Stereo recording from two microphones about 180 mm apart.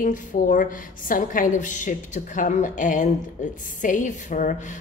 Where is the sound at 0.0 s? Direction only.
50° left (ahead or behind).